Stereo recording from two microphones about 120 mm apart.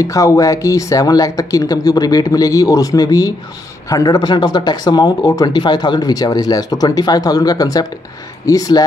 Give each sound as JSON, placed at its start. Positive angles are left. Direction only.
{"t": 0.0, "sound": "speech", "side_deg": 25}